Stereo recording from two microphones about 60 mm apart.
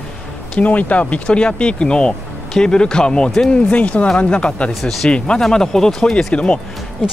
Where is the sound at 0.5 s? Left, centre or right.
Left.